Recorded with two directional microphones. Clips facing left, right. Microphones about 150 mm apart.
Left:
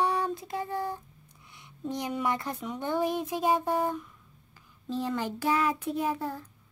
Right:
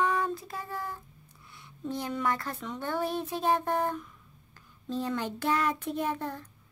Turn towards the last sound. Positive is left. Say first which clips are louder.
# left 1 dB
turn(degrees=10)  # may be behind; listen again after turning